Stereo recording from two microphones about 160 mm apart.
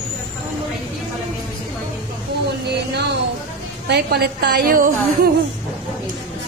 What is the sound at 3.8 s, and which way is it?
A woman's voice, 85° right.